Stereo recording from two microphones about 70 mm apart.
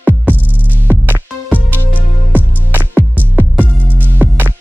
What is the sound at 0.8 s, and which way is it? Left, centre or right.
Music, right.